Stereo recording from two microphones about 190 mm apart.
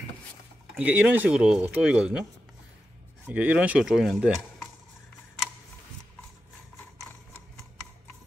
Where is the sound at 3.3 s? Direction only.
10° right (ahead or behind).